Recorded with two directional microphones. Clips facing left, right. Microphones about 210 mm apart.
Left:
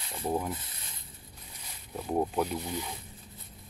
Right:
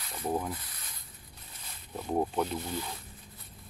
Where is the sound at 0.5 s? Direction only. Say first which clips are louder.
Left 2 dB; 25° left (ahead or behind).